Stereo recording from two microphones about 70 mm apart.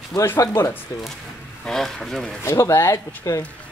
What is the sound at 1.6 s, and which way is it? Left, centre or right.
Speech, centre.